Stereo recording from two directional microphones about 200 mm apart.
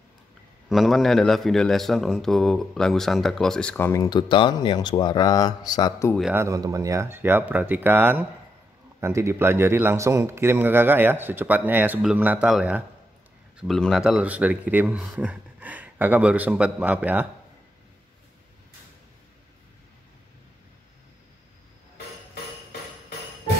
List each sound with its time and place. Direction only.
0.7 s a man's voice: centre (ahead or behind); by 6.1 s 15° left (ahead or behind)
6.3 s a man's voice: 15° right (ahead or behind)
21.9 s a sound: 50° left (ahead or behind)